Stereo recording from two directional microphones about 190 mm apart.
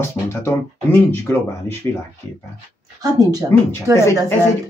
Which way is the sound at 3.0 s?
20° right (ahead or behind).